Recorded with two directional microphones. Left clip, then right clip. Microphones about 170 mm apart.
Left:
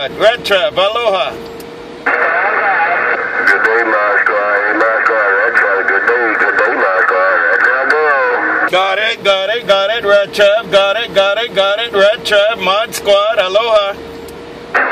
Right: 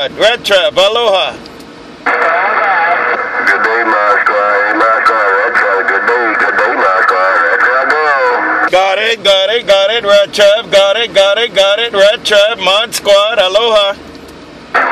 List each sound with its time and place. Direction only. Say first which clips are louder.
0.2 s speech: right 2 dB; 30° right (ahead or behind)
2.0 s radio: right 2 dB; 45° right (ahead or behind)